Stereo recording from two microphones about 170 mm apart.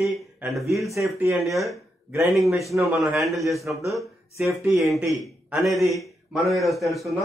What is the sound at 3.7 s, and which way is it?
A man's voice, 10° right (ahead or behind).